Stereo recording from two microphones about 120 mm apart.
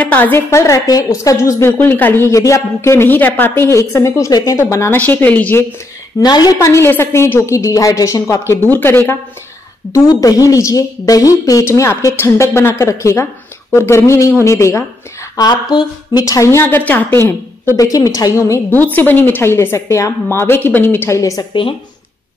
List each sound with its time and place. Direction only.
0.0 s a woman's voice: 15° left (ahead or behind)
6.1 s a woman's voice: 35° left (ahead or behind); by 9.1 s 15° left (ahead or behind)
9.9 s a woman's voice: 30° left (ahead or behind)
15.3 s a woman's voice: 35° left (ahead or behind)
18.7 s speech: 15° left (ahead or behind)
21.2 s a woman's voice: 30° left (ahead or behind)